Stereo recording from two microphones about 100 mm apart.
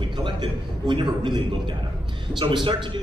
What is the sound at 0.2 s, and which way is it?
A man's voice, 50° right (ahead or behind).